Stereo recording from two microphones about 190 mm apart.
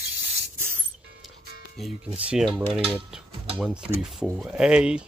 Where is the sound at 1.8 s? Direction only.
Centre (ahead or behind).